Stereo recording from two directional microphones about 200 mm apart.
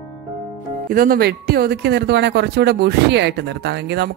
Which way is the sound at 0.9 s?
45° right (ahead or behind).